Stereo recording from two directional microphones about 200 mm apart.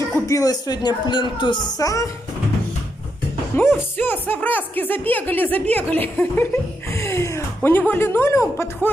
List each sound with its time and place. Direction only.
0.1 s speech: 15° left (ahead or behind)
3.5 s a woman's voice: 10° left (ahead or behind)